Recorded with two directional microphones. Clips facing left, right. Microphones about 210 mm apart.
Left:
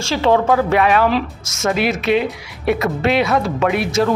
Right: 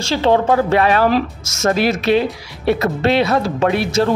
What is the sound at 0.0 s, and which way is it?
Speech, 35° right (ahead or behind).